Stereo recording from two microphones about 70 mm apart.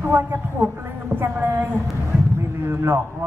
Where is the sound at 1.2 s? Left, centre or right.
Right.